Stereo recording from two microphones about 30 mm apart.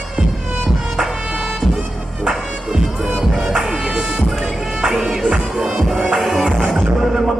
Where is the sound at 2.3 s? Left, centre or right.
Centre.